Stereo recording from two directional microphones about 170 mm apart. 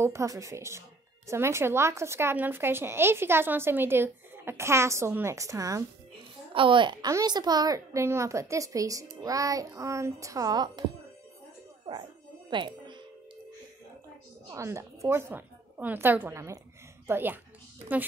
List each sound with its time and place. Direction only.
0.0 s speech: 15° right (ahead or behind)
6.5 s a woman's voice: 30° right (ahead or behind)
11.9 s music: 25° right (ahead or behind)
14.5 s a woman's voice: 15° right (ahead or behind)